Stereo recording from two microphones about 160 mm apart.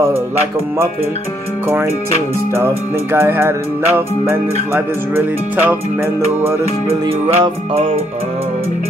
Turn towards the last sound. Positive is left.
turn(degrees=-35)  # may be behind; listen again after turning